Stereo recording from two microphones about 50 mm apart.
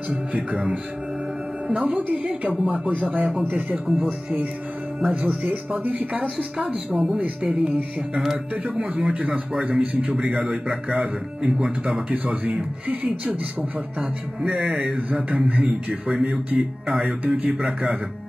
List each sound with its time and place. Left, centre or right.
0.3 s speech: right
5.0 s speech: right
5.4 s speech: right
6.3 s speech: centre